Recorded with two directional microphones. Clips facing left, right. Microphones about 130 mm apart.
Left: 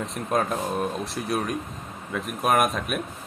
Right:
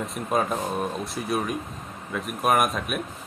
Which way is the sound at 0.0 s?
Centre (ahead or behind).